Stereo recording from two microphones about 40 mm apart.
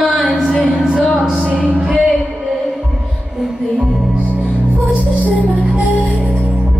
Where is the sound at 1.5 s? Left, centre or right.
Right.